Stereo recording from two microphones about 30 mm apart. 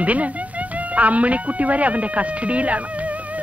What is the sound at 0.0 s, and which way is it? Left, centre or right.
Speech, right.